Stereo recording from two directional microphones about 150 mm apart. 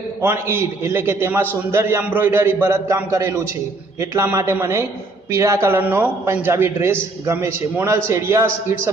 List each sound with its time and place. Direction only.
0.2 s a man's voice: 15° right (ahead or behind)